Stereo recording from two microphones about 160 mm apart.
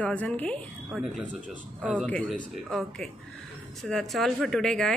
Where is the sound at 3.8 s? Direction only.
Centre (ahead or behind).